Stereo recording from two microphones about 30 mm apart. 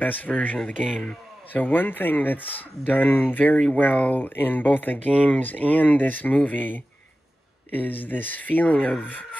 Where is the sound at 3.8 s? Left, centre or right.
Left.